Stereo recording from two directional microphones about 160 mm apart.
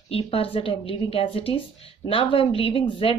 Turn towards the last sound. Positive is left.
turn(degrees=35)  # may be behind; listen again after turning